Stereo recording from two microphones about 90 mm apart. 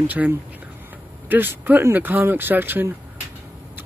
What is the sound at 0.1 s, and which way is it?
Speech, 15° right (ahead or behind).